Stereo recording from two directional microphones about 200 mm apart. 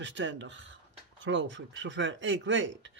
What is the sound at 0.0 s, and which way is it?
A man's voice, 65° right (ahead or behind).